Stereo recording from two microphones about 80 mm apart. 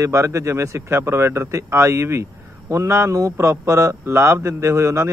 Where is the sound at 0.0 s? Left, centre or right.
Right.